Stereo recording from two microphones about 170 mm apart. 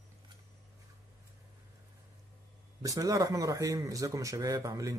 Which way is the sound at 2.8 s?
20° right (ahead or behind).